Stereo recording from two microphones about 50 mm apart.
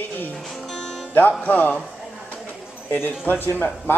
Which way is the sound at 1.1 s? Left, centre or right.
Left.